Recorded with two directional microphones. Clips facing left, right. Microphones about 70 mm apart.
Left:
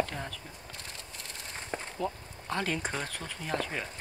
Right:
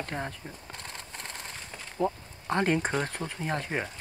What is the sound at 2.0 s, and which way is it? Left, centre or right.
Speech, right.